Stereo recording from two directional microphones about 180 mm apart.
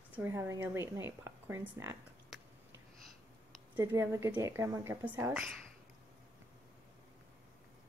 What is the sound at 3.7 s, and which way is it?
A woman's voice, 15° right (ahead or behind).